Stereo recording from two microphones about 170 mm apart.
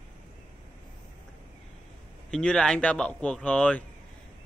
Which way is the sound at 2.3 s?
5° left (ahead or behind).